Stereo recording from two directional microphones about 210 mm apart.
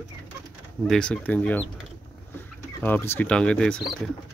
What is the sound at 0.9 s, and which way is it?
Speech, 5° left (ahead or behind).